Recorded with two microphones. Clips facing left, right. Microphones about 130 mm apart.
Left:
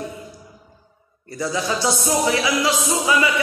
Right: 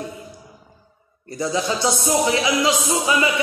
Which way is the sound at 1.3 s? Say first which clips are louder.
Right 1 dB; 20° right (ahead or behind).